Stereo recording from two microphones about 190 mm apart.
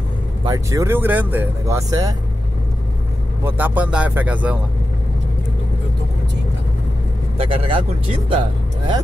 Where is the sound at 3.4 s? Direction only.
10° right (ahead or behind).